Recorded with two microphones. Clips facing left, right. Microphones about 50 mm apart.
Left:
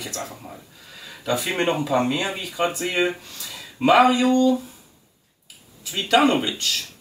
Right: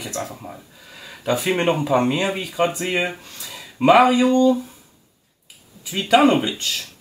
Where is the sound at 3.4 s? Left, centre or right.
Centre.